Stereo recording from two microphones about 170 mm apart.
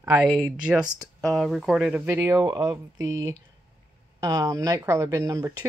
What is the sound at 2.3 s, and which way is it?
Speech, 25° right (ahead or behind).